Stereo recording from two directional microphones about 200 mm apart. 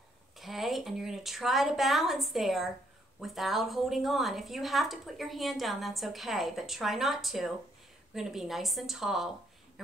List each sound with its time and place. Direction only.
0.4 s a woman's voice: centre (ahead or behind)